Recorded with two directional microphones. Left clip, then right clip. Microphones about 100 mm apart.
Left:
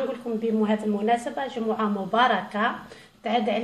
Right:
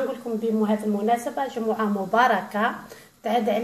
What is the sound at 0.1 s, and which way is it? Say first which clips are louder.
A woman's voice: right 1 dB; 20° right (ahead or behind).